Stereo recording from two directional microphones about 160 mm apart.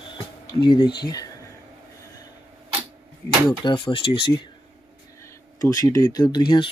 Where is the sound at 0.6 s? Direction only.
30° left (ahead or behind).